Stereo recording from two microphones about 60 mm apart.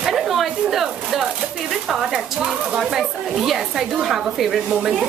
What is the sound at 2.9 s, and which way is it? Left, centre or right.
A woman's voice, centre.